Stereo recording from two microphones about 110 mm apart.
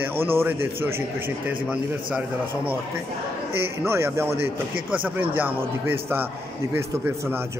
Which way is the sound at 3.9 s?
25° right (ahead or behind).